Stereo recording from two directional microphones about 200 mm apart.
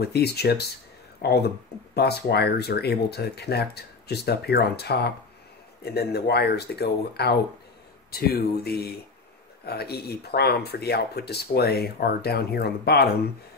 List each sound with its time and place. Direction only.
0.0 s speech: 55° left (ahead or behind)